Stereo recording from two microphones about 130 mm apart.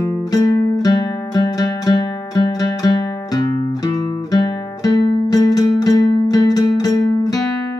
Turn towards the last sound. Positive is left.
turn(degrees=30)  # may be behind; listen again after turning